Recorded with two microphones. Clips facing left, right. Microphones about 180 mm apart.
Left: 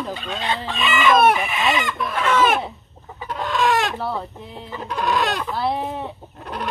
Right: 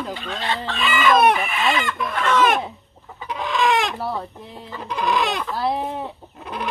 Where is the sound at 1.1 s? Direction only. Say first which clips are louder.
Even; 5° left (ahead or behind).